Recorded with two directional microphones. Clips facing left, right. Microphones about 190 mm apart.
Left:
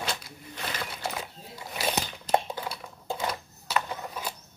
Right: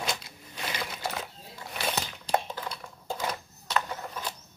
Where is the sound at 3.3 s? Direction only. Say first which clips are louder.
Left 1 dB; 5° left (ahead or behind).